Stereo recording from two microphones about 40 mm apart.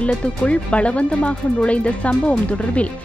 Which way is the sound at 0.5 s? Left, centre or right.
Left.